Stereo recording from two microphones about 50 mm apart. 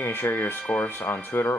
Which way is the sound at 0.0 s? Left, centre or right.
Left.